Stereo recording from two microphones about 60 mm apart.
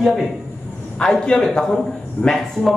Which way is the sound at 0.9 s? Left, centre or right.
Centre.